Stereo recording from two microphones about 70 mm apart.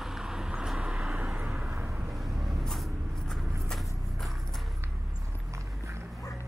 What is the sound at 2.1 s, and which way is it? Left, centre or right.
Vehicle, centre.